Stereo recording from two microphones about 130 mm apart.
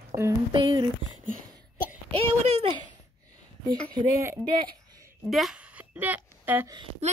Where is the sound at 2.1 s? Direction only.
50° right (ahead or behind).